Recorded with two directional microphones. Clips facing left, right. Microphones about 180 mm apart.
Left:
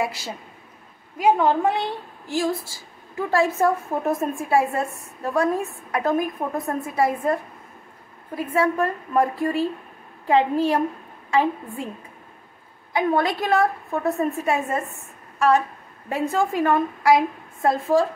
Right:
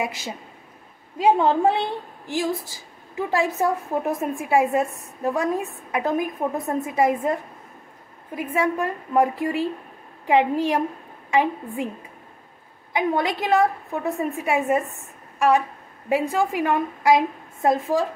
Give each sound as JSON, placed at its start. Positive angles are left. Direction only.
{"t": 0.0, "sound": "a woman's voice", "side_deg": -20}
{"t": 1.1, "sound": "a woman's voice", "side_deg": -30}
{"t": 2.2, "sound": "a woman's voice", "side_deg": -15}
{"t": 8.4, "sound": "a woman's voice", "side_deg": -15}
{"t": 12.9, "sound": "a woman's voice", "side_deg": -15}